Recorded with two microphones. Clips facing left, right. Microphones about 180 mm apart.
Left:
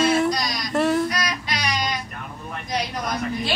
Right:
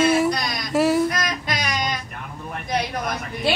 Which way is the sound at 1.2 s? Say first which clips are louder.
Right 1 dB; 50° right (ahead or behind).